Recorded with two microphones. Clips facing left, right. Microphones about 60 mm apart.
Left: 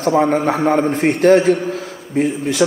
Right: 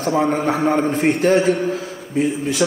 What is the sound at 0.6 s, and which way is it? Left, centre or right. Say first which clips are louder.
Speech: left 2 dB; centre.